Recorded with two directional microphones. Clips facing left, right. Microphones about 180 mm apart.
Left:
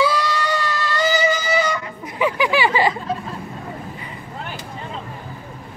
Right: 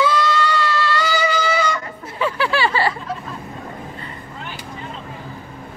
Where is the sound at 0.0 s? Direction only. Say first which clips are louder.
Right 2 dB; 15° left (ahead or behind).